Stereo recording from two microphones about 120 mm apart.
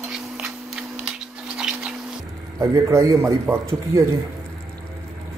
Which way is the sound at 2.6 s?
25° right (ahead or behind).